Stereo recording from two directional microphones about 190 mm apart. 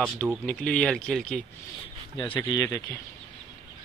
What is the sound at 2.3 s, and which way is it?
Speech, 20° left (ahead or behind).